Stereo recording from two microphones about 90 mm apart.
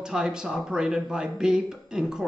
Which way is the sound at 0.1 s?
5° right (ahead or behind).